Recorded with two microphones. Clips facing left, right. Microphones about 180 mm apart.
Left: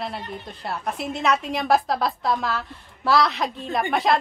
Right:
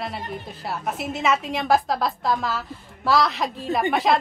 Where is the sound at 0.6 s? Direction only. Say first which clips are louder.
Even; centre (ahead or behind).